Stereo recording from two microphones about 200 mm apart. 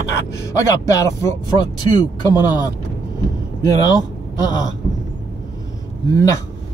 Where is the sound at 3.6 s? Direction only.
20° left (ahead or behind).